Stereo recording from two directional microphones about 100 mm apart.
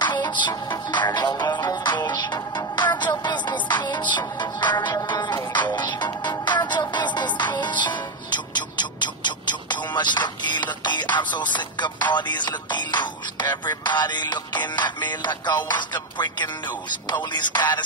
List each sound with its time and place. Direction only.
0.0 s music: 50° left (ahead or behind)